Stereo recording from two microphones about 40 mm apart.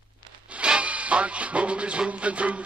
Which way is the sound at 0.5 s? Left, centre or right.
Right.